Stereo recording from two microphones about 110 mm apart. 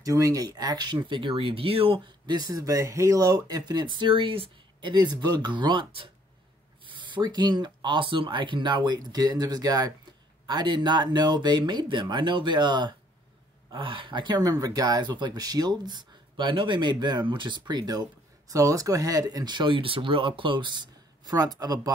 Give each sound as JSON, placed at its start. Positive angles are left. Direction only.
{"t": 0.0, "sound": "speech", "side_deg": -30}
{"t": 1.0, "sound": "speech", "side_deg": -50}
{"t": 2.2, "sound": "speech", "side_deg": -35}
{"t": 4.9, "sound": "speech", "side_deg": -40}